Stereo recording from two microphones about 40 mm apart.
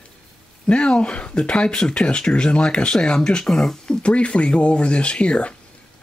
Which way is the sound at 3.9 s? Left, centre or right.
Left.